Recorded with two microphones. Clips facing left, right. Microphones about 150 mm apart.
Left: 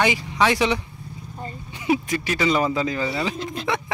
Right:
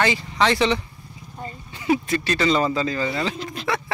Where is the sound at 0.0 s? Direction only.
15° left (ahead or behind).